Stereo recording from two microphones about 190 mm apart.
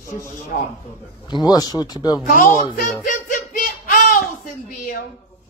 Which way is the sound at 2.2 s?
50° left (ahead or behind).